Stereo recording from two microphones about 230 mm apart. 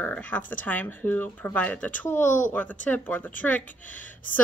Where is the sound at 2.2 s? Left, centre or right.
Left.